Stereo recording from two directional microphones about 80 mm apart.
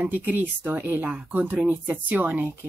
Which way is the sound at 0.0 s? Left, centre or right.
Right.